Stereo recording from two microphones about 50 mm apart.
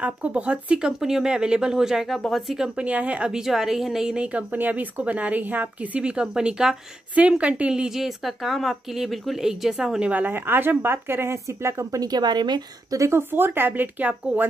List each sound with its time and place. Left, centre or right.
0.0 s speech: right
0.7 s speech: centre
2.1 s a woman's voice: centre
2.5 s speech: centre
2.8 s speech: right
3.3 s speech: centre
4.1 s speech: right
6.3 s speech: centre
7.2 s a woman's voice: right
10.0 s speech: right
10.3 s speech: right
11.4 s speech: right
13.3 s speech: right